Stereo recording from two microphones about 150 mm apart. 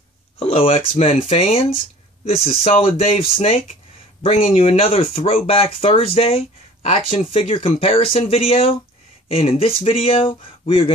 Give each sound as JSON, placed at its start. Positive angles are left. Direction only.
{"t": 0.4, "sound": "speech", "side_deg": 40}